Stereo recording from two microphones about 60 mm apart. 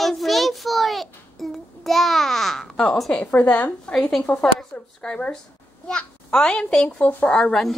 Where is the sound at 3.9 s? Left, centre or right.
Centre.